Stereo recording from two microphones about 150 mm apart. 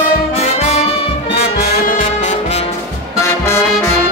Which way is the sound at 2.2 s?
50° left (ahead or behind).